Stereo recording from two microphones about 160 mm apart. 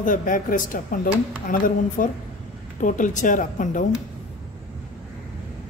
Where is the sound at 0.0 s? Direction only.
55° left (ahead or behind).